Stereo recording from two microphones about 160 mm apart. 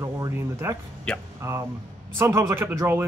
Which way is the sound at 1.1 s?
5° left (ahead or behind).